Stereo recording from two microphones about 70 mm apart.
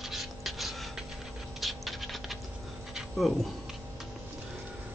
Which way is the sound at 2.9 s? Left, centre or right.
Centre.